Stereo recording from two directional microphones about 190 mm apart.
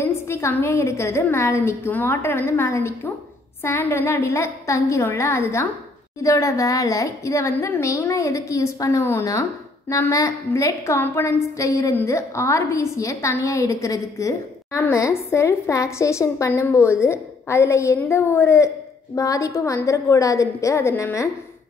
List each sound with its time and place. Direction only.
0.0 s a woman's voice: 15° left (ahead or behind)